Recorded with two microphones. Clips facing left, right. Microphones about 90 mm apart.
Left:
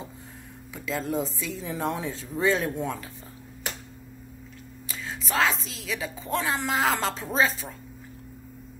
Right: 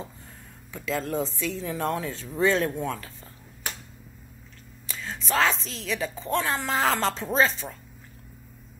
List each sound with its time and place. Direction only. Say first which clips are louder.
0.7 s speech: right 1 dB; centre (ahead or behind)
4.8 s a woman's voice: right 2 dB; 5° left (ahead or behind)